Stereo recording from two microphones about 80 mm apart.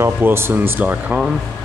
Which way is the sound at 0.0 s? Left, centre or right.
Right.